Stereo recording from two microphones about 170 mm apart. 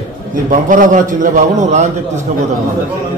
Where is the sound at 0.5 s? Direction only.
50° right (ahead or behind).